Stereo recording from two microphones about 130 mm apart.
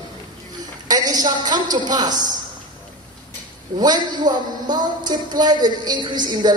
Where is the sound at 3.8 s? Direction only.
35° right (ahead or behind).